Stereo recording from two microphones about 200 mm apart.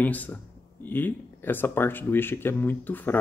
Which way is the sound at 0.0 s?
10° left (ahead or behind).